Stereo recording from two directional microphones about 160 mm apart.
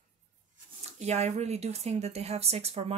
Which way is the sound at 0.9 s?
45° right (ahead or behind).